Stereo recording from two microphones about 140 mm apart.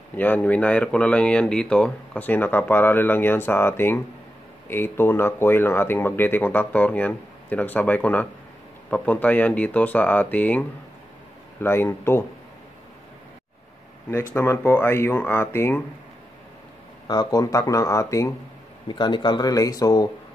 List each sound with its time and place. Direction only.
0.1 s speech: 10° left (ahead or behind)
11.6 s speech: 15° left (ahead or behind)
14.3 s speech: 15° left (ahead or behind)
17.1 s speech: 25° left (ahead or behind)
18.9 s speech: 35° left (ahead or behind)